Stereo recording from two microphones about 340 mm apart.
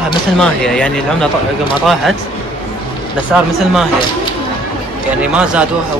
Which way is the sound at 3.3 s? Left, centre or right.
Centre.